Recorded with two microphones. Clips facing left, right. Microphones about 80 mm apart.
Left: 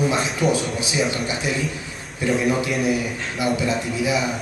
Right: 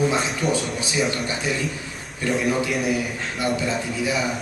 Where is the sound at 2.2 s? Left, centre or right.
Centre.